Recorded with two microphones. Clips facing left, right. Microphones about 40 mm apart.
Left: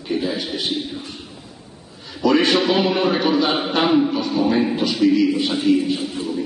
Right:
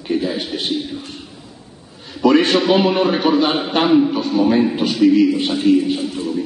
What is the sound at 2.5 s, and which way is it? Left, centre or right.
A man's voice, centre.